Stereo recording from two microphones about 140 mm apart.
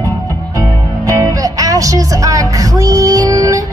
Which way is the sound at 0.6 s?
25° right (ahead or behind).